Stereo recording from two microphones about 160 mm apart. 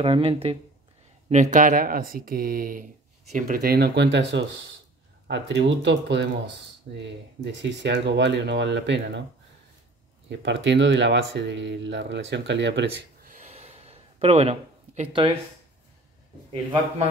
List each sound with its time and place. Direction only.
0.0 s speech: 35° right (ahead or behind)
1.3 s speech: 50° right (ahead or behind); by 9.2 s 90° right
10.3 s speech: 90° right; by 13.5 s 60° right (ahead or behind)
13.5 s gasp: 45° right (ahead or behind)